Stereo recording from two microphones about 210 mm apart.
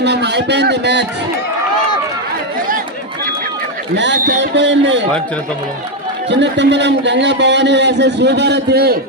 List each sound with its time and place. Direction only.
0.0 s a man's voice: 55° right (ahead or behind)
3.9 s a man's voice: 55° right (ahead or behind)
6.3 s a man's voice: 55° right (ahead or behind)